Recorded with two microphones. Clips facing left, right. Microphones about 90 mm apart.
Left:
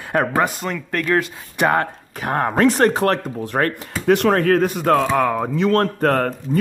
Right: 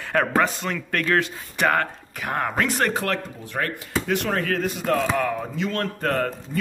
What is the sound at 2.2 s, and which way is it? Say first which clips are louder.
Speech: left 7 dB; 40° left (ahead or behind).